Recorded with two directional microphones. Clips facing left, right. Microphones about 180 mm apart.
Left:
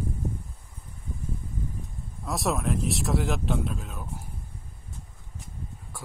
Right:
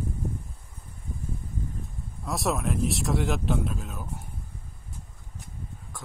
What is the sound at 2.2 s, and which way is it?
Speech, centre (ahead or behind).